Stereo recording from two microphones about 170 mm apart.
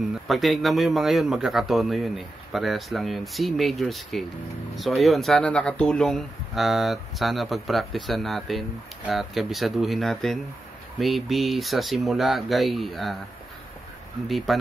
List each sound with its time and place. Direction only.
0.3 s speech: centre (ahead or behind)
14.3 s speech: centre (ahead or behind)